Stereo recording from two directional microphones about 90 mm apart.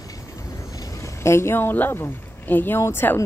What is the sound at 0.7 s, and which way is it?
Speech, 40° left (ahead or behind).